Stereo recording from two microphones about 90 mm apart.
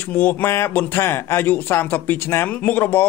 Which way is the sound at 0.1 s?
20° left (ahead or behind).